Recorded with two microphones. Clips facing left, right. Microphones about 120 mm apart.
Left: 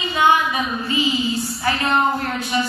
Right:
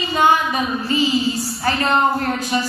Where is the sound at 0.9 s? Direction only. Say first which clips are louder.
Right 3 dB; 40° right (ahead or behind).